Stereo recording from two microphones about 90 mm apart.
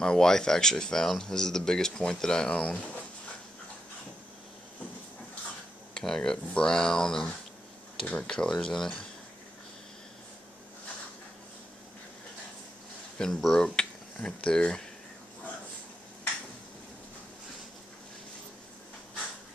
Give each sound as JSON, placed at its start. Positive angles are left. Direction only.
{"t": 0.0, "sound": "speech", "side_deg": 5}
{"t": 5.9, "sound": "speech", "side_deg": 5}
{"t": 13.2, "sound": "speech", "side_deg": 5}